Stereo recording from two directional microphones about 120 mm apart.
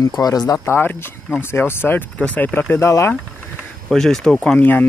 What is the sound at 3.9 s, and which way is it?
Speech, 5° left (ahead or behind).